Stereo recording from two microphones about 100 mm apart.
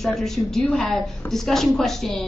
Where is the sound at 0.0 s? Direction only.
5° left (ahead or behind).